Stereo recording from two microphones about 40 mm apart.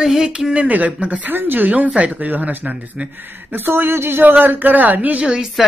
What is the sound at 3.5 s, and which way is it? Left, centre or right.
Speech, right.